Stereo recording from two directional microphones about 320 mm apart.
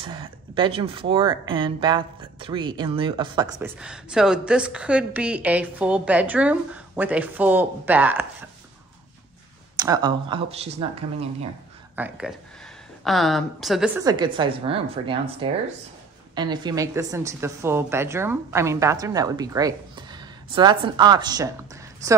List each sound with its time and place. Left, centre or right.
0.0 s speech: centre
9.8 s speech: centre
11.9 s speech: centre